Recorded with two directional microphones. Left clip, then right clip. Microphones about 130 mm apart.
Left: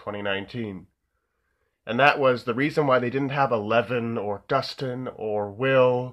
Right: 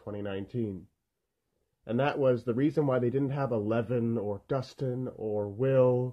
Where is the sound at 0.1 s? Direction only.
55° right (ahead or behind).